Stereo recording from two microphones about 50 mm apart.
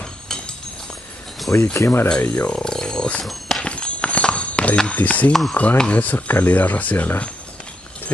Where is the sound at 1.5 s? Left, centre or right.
Left.